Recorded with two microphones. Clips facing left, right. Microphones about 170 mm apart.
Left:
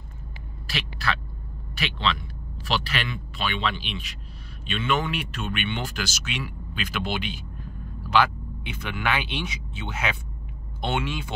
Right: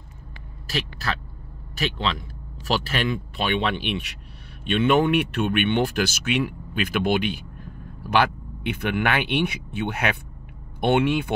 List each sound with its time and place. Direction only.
0.7 s speech: 40° right (ahead or behind); by 11.3 s 60° right (ahead or behind)